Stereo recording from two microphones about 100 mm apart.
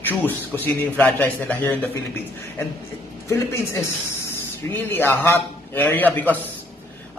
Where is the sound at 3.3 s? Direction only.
25° left (ahead or behind).